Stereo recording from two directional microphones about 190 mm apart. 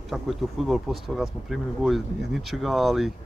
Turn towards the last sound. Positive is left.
turn(degrees=0)  # may be behind; listen again after turning